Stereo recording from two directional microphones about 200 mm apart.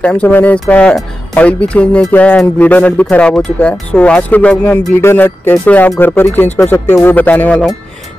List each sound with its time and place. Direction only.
0.0 s speech: 5° left (ahead or behind)